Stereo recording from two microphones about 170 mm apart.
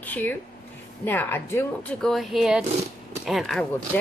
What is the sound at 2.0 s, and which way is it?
A woman's voice, centre (ahead or behind).